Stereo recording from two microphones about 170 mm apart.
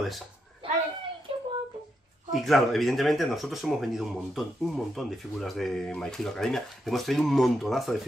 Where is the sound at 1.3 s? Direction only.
30° right (ahead or behind).